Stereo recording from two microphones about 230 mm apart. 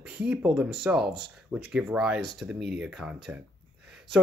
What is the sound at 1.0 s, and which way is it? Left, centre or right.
Speech, right.